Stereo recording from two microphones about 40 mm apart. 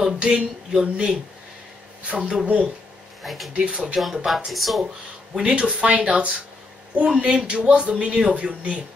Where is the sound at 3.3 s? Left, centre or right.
Centre.